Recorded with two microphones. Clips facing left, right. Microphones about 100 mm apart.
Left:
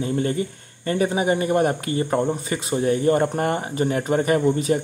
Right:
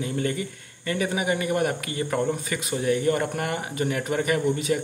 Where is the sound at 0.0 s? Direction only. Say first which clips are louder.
Left 4 dB; 30° left (ahead or behind).